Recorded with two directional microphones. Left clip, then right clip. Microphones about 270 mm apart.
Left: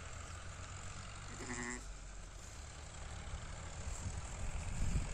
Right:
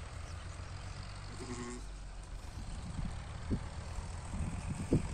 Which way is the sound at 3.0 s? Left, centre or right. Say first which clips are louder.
Right 2 dB; left.